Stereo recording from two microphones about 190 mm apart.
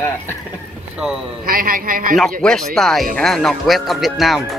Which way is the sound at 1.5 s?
50° right (ahead or behind).